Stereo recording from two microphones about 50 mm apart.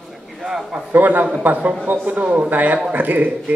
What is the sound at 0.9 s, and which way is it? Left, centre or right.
A man's voice, right.